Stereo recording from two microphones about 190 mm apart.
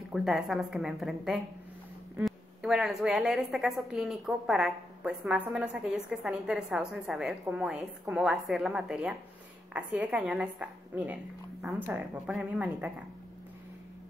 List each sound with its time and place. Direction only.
0.1 s a woman's voice: centre (ahead or behind)